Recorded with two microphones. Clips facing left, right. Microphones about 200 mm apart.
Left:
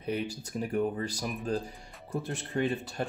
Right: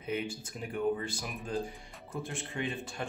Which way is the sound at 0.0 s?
40° left (ahead or behind).